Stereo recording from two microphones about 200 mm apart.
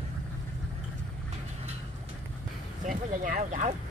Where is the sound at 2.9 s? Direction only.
40° right (ahead or behind).